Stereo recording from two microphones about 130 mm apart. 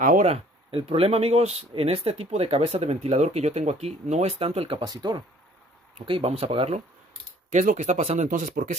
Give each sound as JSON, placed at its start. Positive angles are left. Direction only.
{"t": 0.0, "sound": "speech", "side_deg": -85}
{"t": 0.3, "sound": "speech", "side_deg": -45}
{"t": 4.7, "sound": "speech", "side_deg": -35}
{"t": 6.0, "sound": "speech", "side_deg": -45}
{"t": 7.5, "sound": "speech", "side_deg": -70}
{"t": 8.3, "sound": "speech", "side_deg": -80}